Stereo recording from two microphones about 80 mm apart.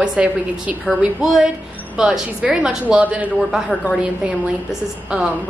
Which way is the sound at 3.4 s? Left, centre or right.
Centre.